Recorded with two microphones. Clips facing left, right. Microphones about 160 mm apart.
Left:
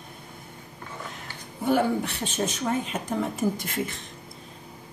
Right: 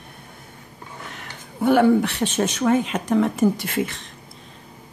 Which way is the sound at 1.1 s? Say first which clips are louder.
Right 2 dB; 70° right (ahead or behind).